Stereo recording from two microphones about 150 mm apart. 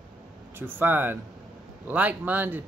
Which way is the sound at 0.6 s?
15° right (ahead or behind).